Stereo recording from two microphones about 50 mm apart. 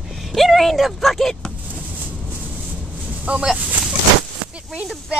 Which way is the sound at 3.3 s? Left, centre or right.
Right.